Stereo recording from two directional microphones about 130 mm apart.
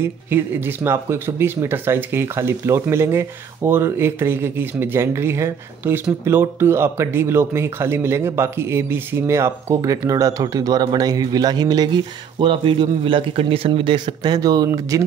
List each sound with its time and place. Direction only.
0.0 s speech: 15° right (ahead or behind)